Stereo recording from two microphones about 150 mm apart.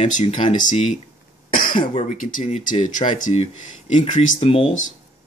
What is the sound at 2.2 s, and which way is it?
Speech, 60° left (ahead or behind).